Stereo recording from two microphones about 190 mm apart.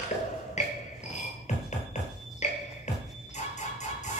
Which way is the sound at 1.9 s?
40° left (ahead or behind).